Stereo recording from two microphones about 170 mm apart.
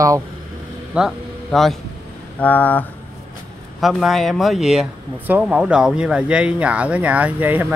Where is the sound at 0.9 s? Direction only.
Centre (ahead or behind).